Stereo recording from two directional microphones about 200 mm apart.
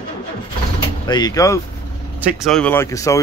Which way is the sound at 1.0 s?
20° left (ahead or behind).